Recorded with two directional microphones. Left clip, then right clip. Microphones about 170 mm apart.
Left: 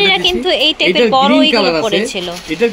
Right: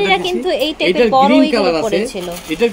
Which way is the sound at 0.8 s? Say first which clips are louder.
Right 2 dB; 30° left (ahead or behind).